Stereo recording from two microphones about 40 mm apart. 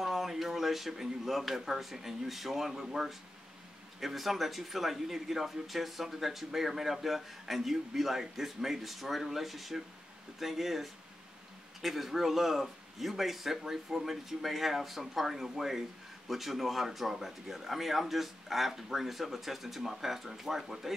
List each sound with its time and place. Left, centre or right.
0.0 s speech: centre